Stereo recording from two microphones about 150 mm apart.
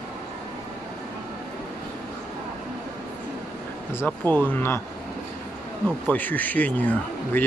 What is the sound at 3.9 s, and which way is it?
Speech, 15° left (ahead or behind).